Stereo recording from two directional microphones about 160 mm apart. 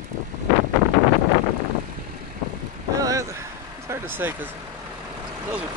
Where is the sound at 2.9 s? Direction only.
20° right (ahead or behind).